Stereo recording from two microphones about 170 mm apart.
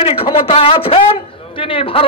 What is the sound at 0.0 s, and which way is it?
A man's voice, 30° left (ahead or behind).